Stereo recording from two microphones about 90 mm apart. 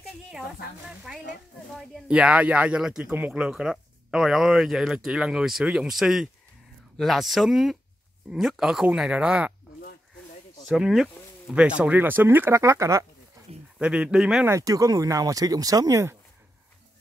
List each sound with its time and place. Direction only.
0.8 s speech: 5° right (ahead or behind)
10.7 s speech: 5° right (ahead or behind); by 13.0 s 35° right (ahead or behind)
13.7 s speech: 10° right (ahead or behind)
14.6 s speech: 40° right (ahead or behind)